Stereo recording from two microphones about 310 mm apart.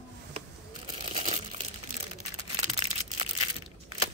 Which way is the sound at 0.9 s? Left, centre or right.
Centre.